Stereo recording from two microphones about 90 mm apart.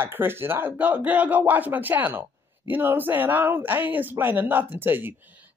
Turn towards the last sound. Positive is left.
turn(degrees=-25)  # may be behind; listen again after turning